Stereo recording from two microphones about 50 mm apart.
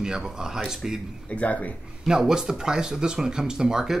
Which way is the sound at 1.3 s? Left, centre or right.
Left.